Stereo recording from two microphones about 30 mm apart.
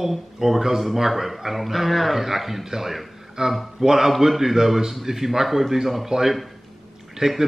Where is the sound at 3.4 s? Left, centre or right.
Right.